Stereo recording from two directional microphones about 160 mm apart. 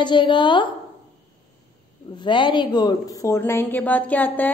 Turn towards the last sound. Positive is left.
turn(degrees=10)  # may be behind; listen again after turning